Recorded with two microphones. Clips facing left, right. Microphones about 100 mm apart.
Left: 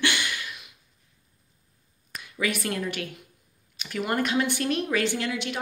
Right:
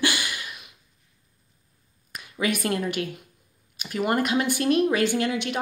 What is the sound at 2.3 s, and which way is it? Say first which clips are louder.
Speech: right 3 dB; 20° right (ahead or behind).